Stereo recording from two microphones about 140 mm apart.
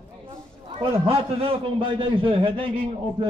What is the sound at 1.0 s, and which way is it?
A man's voice, 40° right (ahead or behind).